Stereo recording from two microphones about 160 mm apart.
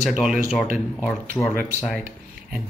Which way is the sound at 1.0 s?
10° left (ahead or behind).